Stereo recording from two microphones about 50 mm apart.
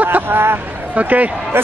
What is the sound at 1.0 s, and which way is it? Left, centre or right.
Speech, right.